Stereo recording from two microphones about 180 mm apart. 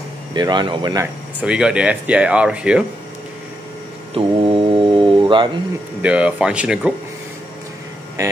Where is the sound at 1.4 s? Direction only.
5° right (ahead or behind).